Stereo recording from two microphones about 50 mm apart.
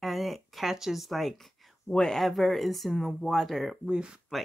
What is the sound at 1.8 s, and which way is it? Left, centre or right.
Speech, centre.